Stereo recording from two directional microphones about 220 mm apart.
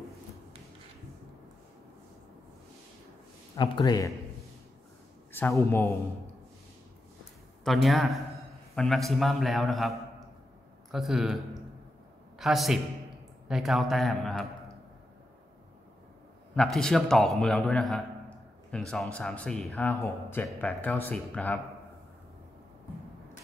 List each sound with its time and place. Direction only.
3.5 s a man's voice: 20° left (ahead or behind)
5.3 s speech: 10° left (ahead or behind)
7.6 s a man's voice: centre (ahead or behind)
12.4 s a man's voice: centre (ahead or behind)
16.5 s a man's voice: 5° left (ahead or behind)